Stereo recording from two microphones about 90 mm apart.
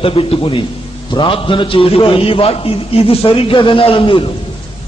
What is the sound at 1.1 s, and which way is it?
A man's voice, 70° left (ahead or behind).